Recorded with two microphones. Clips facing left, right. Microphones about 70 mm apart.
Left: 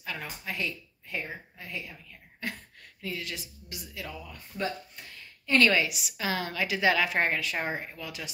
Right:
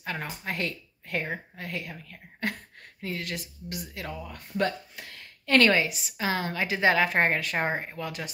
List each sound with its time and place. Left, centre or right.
0.0 s a woman's voice: right
3.0 s speech: right
4.6 s speech: right
5.7 s a woman's voice: right